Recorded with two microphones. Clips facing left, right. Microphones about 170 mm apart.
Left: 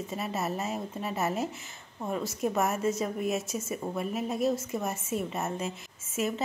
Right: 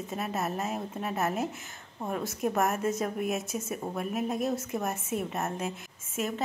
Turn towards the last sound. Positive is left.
turn(degrees=5)  # may be behind; listen again after turning